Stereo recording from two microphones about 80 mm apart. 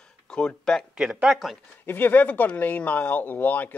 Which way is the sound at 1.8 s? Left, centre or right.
Left.